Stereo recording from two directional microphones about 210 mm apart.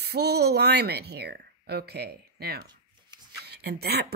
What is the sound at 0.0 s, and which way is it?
Speech, 50° right (ahead or behind).